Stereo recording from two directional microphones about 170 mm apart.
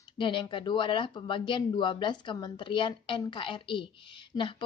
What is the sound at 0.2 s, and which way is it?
Speech, 30° left (ahead or behind).